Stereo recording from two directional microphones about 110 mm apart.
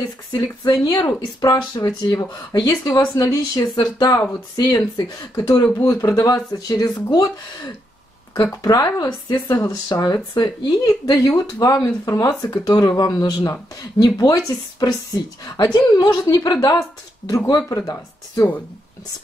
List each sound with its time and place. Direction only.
0.3 s speech: 40° left (ahead or behind)
10.8 s speech: 30° left (ahead or behind)
17.3 s speech: 30° left (ahead or behind)